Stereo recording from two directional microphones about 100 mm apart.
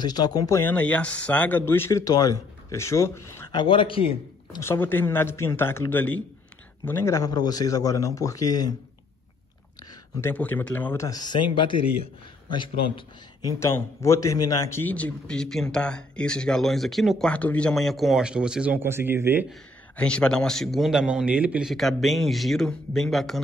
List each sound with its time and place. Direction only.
0.0 s speech: 45° left (ahead or behind)
0.6 s speech: 15° left (ahead or behind)
3.5 s a man's voice: 60° left (ahead or behind)
4.6 s speech: 20° left (ahead or behind)
7.2 s speech: 40° left (ahead or behind)
10.2 s a man's voice: 20° left (ahead or behind)
11.0 s a man's voice: 40° left (ahead or behind); by 13.0 s 55° left (ahead or behind)
13.6 s a man's voice: 30° left (ahead or behind); by 17.3 s centre (ahead or behind)
17.3 s a man's voice: 15° left (ahead or behind); by 18.8 s 10° right (ahead or behind)
18.8 s speech: 25° right (ahead or behind)
20.0 s a man's voice: 10° left (ahead or behind); by 21.7 s 10° right (ahead or behind)
21.7 s a man's voice: centre (ahead or behind)